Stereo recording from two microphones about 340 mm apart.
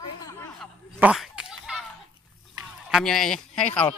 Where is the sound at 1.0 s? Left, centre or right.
Centre.